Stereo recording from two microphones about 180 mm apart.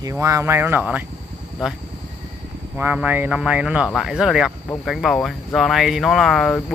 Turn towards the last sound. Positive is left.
turn(degrees=0)  # may be behind; listen again after turning